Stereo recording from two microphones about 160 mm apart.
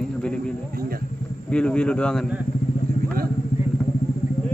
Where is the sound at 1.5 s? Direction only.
5° left (ahead or behind).